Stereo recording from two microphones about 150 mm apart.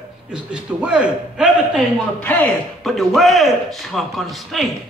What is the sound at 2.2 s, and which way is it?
Speech, 10° left (ahead or behind).